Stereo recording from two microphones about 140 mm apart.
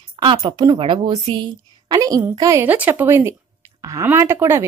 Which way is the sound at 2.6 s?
15° right (ahead or behind).